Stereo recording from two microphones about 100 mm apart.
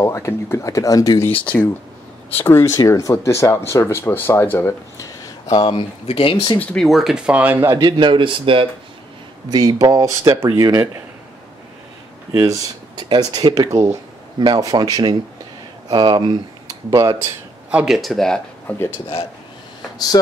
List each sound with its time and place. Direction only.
0.0 s speech: 30° left (ahead or behind)
1.4 s speech: 15° left (ahead or behind); by 5.1 s 30° left (ahead or behind)
5.7 s speech: 70° left (ahead or behind)
6.6 s speech: 10° left (ahead or behind)
6.9 s speech: 5° right (ahead or behind); by 7.8 s 25° right (ahead or behind)
7.8 s speech: 55° right (ahead or behind)
9.5 s speech: 40° right (ahead or behind)
10.4 s speech: 25° right (ahead or behind)
12.3 s speech: 30° right (ahead or behind)
12.9 s speech: 45° right (ahead or behind)
17.6 s speech: 15° right (ahead or behind)
17.9 s speech: centre (ahead or behind)
18.7 s speech: 15° left (ahead or behind)